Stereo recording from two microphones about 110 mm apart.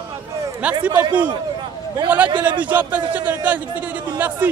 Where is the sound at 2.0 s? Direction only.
15° right (ahead or behind).